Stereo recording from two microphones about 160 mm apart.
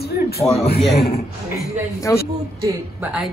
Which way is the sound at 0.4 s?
40° left (ahead or behind).